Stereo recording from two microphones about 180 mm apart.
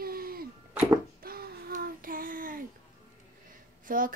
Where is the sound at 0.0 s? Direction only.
55° right (ahead or behind).